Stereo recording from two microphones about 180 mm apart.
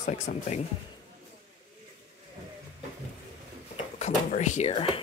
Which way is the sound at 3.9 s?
40° left (ahead or behind).